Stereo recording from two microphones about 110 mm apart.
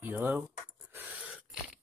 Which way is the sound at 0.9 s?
15° right (ahead or behind).